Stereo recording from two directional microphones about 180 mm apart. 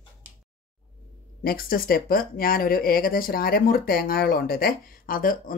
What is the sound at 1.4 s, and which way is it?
Speech, 55° left (ahead or behind).